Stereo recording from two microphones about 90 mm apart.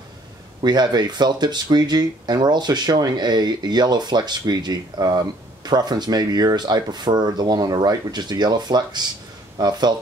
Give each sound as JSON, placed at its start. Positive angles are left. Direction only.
{"t": 0.6, "sound": "speech", "side_deg": -55}